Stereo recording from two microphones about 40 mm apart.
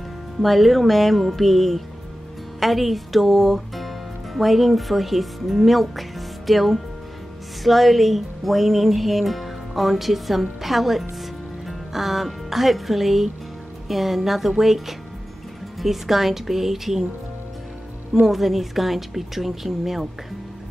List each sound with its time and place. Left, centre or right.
0.4 s a woman's voice: centre
18.2 s speech: centre